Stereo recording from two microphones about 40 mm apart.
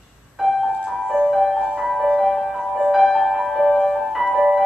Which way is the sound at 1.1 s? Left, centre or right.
Centre.